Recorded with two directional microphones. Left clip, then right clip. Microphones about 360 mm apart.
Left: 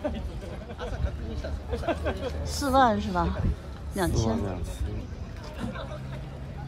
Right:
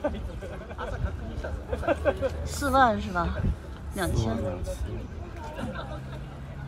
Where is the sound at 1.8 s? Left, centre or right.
Centre.